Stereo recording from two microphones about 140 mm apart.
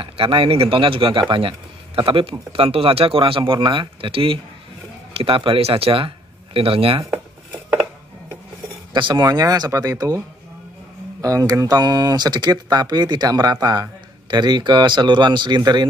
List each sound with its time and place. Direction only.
0.0 s speech: 40° right (ahead or behind)
8.9 s speech: 30° right (ahead or behind)